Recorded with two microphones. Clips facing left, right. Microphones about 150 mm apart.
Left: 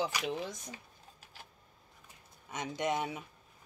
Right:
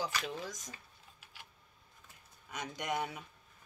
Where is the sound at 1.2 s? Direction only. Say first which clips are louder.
Left 2 dB; 40° left (ahead or behind).